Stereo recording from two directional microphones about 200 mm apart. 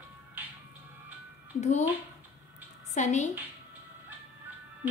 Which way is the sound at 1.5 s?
35° left (ahead or behind).